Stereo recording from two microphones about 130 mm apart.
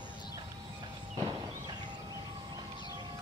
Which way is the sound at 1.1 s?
30° right (ahead or behind).